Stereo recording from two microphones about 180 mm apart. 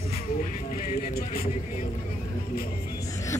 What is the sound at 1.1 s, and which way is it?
Speech, 55° left (ahead or behind).